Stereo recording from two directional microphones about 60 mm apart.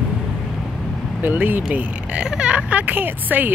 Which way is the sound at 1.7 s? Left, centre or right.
Centre.